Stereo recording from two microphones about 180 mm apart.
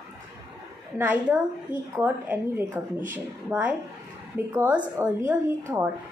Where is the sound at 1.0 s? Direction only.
10° right (ahead or behind).